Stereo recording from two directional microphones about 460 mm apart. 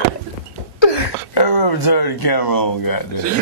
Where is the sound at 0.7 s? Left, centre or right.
Left.